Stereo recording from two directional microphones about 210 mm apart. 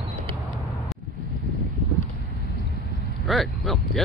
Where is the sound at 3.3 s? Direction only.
Centre (ahead or behind).